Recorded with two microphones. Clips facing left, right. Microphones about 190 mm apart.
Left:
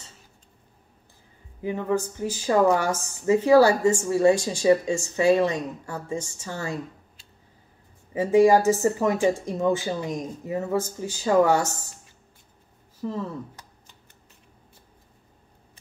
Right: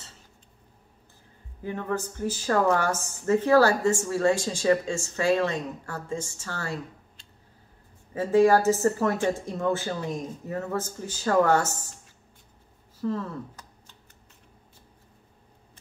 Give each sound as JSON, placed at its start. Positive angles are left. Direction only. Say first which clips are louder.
{"t": 1.6, "sound": "a woman's voice", "louder": "left 5 dB", "side_deg": 15}
{"t": 13.0, "sound": "a woman's voice", "louder": "right 1 dB", "side_deg": 15}